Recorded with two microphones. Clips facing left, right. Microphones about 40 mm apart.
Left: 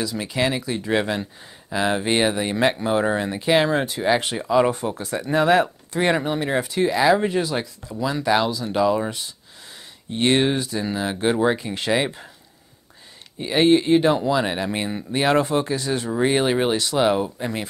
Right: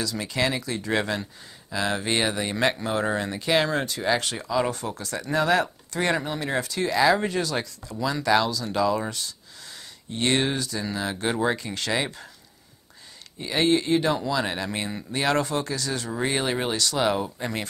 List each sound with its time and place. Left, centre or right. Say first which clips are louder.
0.0 s speech: left 3 dB; centre
13.4 s speech: left 5 dB; centre